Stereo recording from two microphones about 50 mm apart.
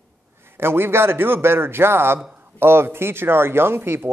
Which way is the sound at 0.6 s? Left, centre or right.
Right.